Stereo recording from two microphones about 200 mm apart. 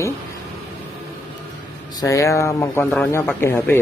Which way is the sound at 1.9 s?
15° left (ahead or behind).